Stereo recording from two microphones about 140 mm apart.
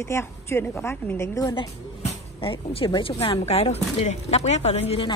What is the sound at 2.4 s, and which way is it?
Speech, 40° left (ahead or behind).